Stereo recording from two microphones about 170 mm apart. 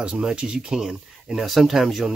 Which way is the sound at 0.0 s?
5° right (ahead or behind).